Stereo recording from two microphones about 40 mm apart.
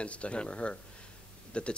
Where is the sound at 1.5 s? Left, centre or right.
Left.